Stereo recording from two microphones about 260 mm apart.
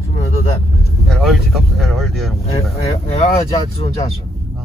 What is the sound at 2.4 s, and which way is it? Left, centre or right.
Speech, left.